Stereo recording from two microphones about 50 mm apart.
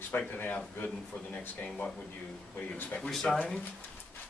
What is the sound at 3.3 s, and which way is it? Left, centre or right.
Speech, centre.